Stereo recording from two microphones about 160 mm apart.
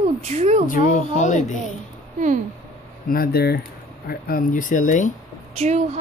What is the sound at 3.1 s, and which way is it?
Speech, 75° left (ahead or behind).